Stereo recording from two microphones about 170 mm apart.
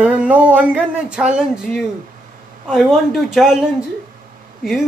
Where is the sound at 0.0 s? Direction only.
10° right (ahead or behind).